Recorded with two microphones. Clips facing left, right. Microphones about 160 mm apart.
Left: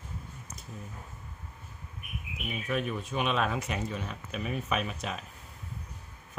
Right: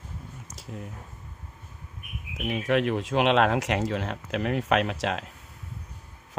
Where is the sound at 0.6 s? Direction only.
90° right.